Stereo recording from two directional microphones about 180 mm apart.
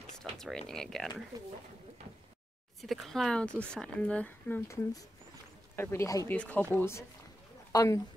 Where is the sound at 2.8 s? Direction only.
Centre (ahead or behind).